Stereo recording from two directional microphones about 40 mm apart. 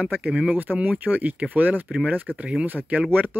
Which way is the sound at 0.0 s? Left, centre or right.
Right.